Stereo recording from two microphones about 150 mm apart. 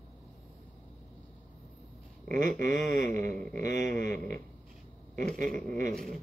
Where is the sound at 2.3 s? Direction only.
5° left (ahead or behind).